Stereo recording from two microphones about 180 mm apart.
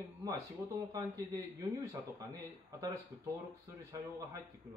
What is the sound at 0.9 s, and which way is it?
Speech, 20° right (ahead or behind).